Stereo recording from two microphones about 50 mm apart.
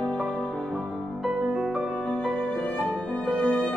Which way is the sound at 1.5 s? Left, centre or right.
Centre.